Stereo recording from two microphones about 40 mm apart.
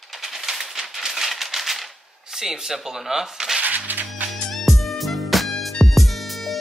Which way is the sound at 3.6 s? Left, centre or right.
Right.